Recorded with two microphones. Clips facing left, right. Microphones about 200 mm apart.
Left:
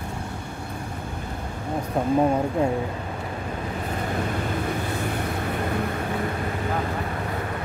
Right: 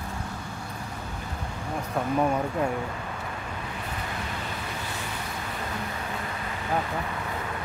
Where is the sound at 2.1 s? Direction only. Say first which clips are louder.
Left 4 dB; 25° left (ahead or behind).